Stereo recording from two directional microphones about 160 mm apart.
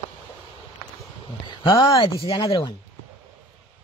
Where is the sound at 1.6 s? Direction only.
20° left (ahead or behind).